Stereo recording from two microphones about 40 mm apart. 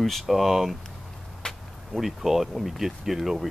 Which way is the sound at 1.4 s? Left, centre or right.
Left.